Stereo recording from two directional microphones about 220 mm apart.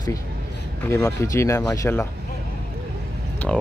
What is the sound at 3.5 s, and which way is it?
Speech, centre (ahead or behind).